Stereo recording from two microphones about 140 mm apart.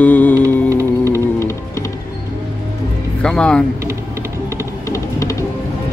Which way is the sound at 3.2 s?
5° left (ahead or behind).